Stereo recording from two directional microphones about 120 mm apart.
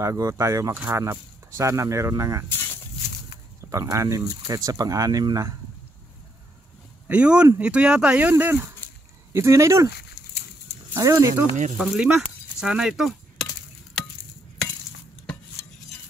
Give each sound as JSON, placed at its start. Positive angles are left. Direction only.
{"t": 0.0, "sound": "speech", "side_deg": -25}
{"t": 3.7, "sound": "speech", "side_deg": -25}
{"t": 7.1, "sound": "speech", "side_deg": -10}
{"t": 11.0, "sound": "speech", "side_deg": -30}
{"t": 11.8, "sound": "speech", "side_deg": 0}